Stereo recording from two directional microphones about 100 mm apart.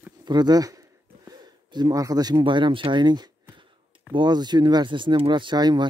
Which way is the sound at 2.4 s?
55° right (ahead or behind).